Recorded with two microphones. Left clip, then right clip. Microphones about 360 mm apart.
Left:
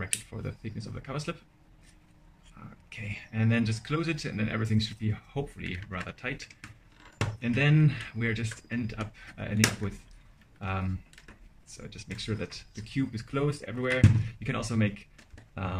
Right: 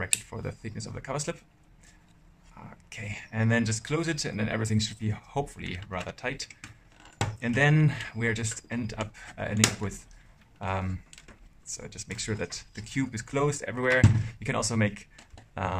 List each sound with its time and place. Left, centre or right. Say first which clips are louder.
0.0 s speech: right 5 dB; centre
2.9 s speech: right 2 dB; centre
15.5 s a sound: right 6 dB; centre